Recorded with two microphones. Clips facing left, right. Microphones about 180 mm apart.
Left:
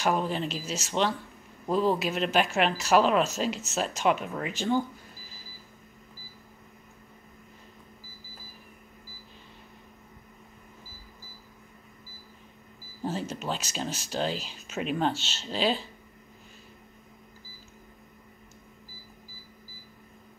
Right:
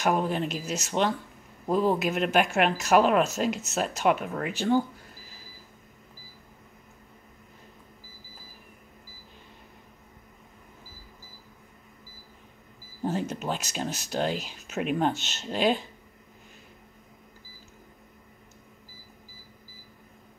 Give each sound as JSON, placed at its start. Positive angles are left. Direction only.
{"t": 0.0, "sound": "speech", "side_deg": -10}
{"t": 13.0, "sound": "speech", "side_deg": -15}